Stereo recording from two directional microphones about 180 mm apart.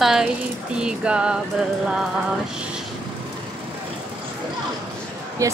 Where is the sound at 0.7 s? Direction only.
5° right (ahead or behind).